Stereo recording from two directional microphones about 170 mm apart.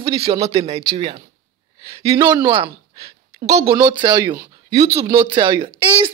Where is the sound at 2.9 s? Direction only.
35° right (ahead or behind).